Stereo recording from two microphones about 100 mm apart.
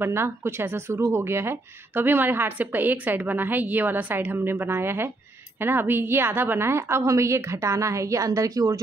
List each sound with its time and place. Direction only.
0.0 s speech: 25° right (ahead or behind)